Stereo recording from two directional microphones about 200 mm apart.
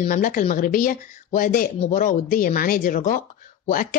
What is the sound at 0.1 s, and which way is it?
Speech, 45° left (ahead or behind).